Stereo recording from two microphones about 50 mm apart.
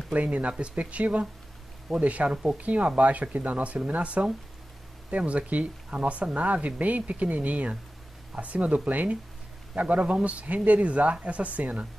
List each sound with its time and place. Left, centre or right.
0.1 s speech: right